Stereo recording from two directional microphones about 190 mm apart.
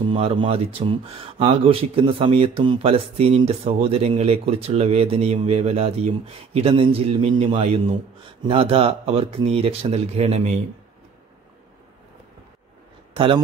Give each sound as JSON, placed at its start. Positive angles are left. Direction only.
{"t": 0.1, "sound": "speech", "side_deg": -30}
{"t": 13.1, "sound": "a man's voice", "side_deg": -30}